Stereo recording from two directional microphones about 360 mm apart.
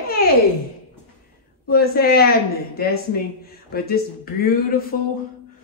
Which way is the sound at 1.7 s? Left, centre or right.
Left.